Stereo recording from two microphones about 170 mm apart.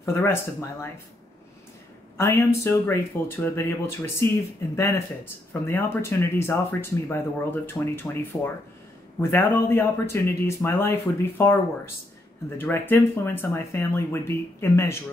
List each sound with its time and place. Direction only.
0.0 s speech: 15° left (ahead or behind)
2.1 s speech: 15° left (ahead or behind)